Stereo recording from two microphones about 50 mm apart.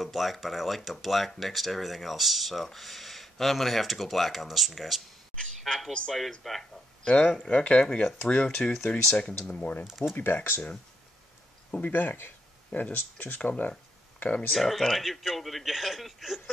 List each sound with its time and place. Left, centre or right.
0.0 s speech: centre
7.1 s speech: left
9.6 s speech: left
9.8 s speech: centre
10.1 s speech: left
11.8 s speech: left
14.5 s speech: centre